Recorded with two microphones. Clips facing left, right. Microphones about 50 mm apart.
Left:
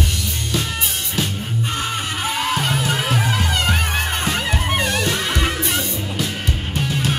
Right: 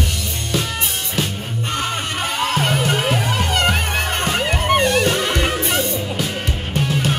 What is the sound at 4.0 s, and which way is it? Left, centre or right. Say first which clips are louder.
Music: right 2 dB; centre.